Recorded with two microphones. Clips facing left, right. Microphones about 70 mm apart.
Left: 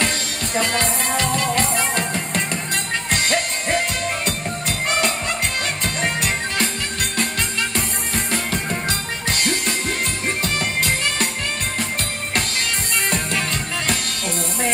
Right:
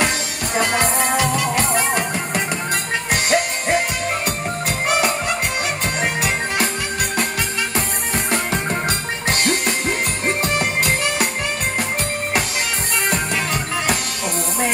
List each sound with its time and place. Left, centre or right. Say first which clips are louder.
0.9 s music: right 3 dB; centre
7.7 s music: right 2 dB; centre
8.6 s music: right 2 dB; right
10.4 s music: right 2 dB; centre